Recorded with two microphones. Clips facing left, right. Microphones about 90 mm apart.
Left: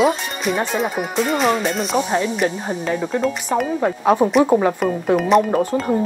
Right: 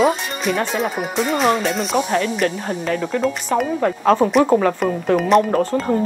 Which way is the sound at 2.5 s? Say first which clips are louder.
Even; 15° left (ahead or behind).